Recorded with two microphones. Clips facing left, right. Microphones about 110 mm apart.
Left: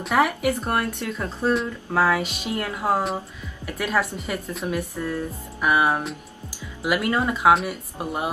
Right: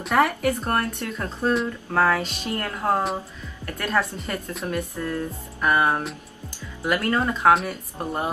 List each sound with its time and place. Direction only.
0.0 s speech: 5° left (ahead or behind)